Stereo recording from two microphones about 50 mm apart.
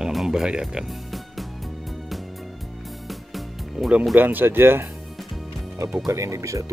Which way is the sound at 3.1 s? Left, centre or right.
Centre.